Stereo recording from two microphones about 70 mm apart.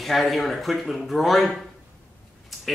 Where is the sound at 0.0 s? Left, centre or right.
Centre.